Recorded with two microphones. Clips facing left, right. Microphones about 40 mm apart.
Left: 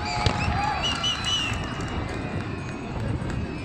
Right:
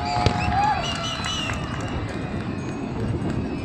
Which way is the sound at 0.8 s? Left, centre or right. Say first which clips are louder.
Even; left.